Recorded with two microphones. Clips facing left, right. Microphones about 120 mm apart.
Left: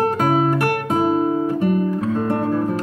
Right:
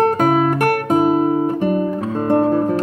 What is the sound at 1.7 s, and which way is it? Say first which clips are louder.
Guitar: even; 25° right (ahead or behind).